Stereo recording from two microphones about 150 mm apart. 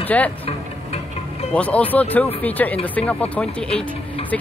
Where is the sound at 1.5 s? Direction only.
10° left (ahead or behind).